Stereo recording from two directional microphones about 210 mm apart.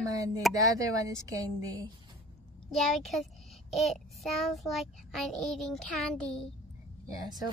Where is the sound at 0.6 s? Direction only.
15° right (ahead or behind).